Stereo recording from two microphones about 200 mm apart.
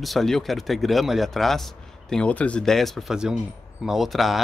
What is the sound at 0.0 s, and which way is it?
Speech, centre (ahead or behind).